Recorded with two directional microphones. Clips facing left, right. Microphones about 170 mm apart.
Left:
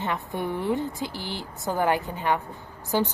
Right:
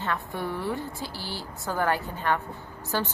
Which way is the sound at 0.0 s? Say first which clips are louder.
Left 2 dB; 20° left (ahead or behind).